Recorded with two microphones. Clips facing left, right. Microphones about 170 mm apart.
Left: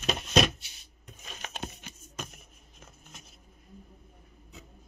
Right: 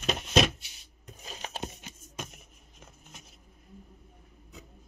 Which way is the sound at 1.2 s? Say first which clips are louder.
Right 2 dB; 30° right (ahead or behind).